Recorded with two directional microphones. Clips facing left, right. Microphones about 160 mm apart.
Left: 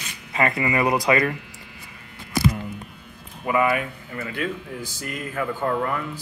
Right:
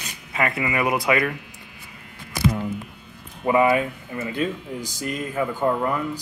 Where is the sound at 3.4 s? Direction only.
25° right (ahead or behind).